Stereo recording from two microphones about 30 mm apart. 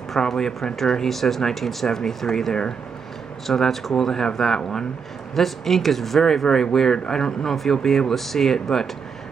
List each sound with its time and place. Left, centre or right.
0.3 s speech: centre
5.3 s speech: centre
6.2 s speech: centre